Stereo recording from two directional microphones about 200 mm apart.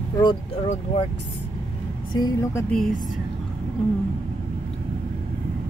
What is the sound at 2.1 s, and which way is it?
Speech, 20° left (ahead or behind).